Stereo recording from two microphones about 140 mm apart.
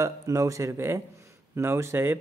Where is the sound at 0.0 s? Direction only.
20° right (ahead or behind).